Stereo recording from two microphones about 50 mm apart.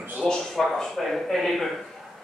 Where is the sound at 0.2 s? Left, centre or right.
Centre.